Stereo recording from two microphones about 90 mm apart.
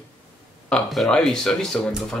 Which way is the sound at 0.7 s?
5° left (ahead or behind).